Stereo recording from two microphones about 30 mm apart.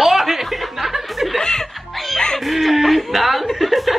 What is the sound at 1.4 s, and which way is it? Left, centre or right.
Music, left.